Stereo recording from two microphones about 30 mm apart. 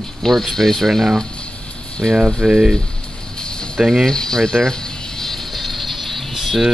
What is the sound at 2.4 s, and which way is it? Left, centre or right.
Speech, right.